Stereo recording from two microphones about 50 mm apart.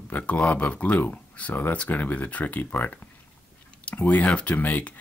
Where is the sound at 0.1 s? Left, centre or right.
Left.